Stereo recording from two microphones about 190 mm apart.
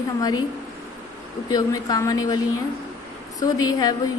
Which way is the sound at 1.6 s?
20° left (ahead or behind).